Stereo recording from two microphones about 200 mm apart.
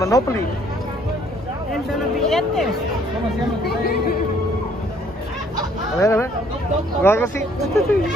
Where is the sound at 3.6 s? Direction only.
50° left (ahead or behind).